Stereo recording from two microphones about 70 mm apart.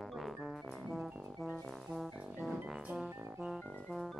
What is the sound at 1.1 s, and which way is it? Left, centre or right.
Music, centre.